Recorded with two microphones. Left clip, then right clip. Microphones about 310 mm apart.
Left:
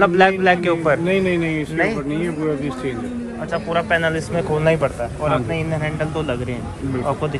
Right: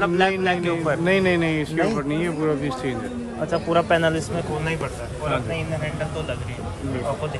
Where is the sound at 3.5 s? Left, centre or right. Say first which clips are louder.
Left 1 dB; centre.